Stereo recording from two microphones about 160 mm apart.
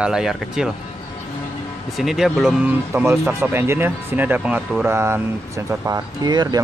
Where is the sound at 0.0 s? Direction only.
5° right (ahead or behind).